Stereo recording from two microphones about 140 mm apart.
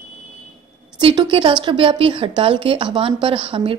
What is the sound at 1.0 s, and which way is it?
A woman's voice, 35° right (ahead or behind).